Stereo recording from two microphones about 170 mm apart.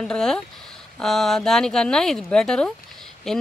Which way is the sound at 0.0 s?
5° left (ahead or behind).